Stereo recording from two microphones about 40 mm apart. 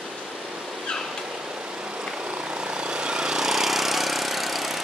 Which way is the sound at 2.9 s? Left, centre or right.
Centre.